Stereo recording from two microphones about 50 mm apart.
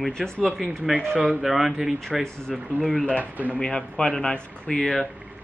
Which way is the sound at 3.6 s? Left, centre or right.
Centre.